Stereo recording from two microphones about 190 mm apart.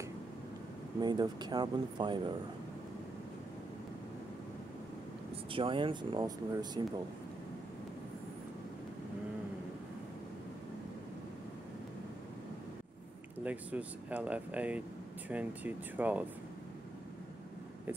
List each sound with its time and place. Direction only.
1.0 s speech: 20° right (ahead or behind)
5.5 s speech: 30° right (ahead or behind)
13.4 s speech: 10° right (ahead or behind)